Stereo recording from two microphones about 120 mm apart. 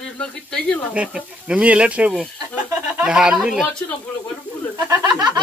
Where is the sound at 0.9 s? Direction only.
10° right (ahead or behind).